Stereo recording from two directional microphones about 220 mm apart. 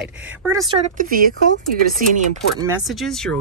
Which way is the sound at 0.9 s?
40° right (ahead or behind).